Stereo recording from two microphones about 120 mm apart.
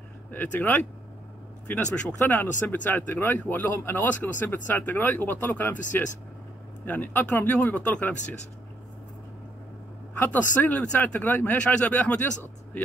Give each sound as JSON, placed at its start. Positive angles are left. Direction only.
{"t": 0.3, "sound": "speech", "side_deg": 15}
{"t": 6.9, "sound": "speech", "side_deg": 15}
{"t": 10.1, "sound": "speech", "side_deg": 15}